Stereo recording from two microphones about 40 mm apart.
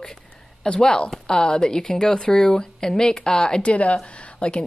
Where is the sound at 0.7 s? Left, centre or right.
Left.